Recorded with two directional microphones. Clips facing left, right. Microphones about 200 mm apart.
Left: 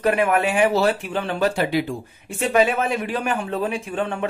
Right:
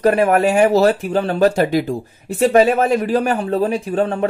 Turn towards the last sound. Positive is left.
turn(degrees=-40)  # may be behind; listen again after turning